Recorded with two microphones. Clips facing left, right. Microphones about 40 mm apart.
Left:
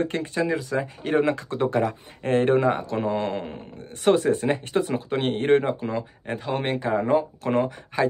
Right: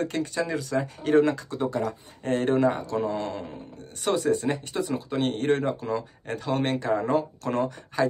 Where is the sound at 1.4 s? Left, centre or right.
Left.